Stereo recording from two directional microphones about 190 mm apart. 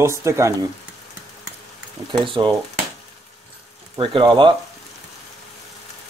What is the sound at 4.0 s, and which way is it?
Speech, 25° right (ahead or behind).